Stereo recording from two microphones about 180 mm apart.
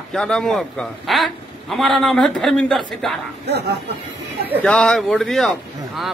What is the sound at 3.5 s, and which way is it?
Speech, 65° right (ahead or behind).